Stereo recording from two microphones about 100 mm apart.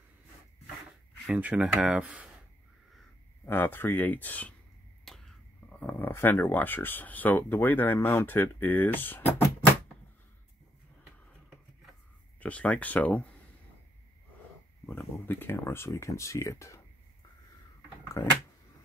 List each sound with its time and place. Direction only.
1.2 s speech: 15° right (ahead or behind)
3.4 s speech: 20° left (ahead or behind)
5.0 s speech: centre (ahead or behind); by 9.2 s 20° left (ahead or behind)
12.4 s speech: 15° left (ahead or behind)
14.9 s speech: 20° left (ahead or behind)
18.2 s speech: 30° left (ahead or behind)